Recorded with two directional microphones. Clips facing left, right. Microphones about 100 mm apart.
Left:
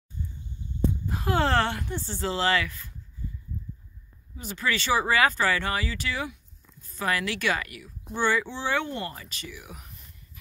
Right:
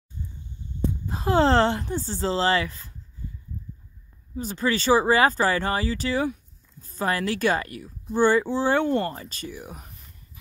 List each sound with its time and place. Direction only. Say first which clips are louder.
1.0 s speech: right 7 dB; 25° right (ahead or behind)
4.4 s speech: right 4 dB; 35° right (ahead or behind)
9.1 s speech: right 5 dB; 35° right (ahead or behind)